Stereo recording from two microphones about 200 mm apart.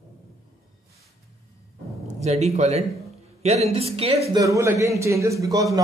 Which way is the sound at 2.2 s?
35° right (ahead or behind).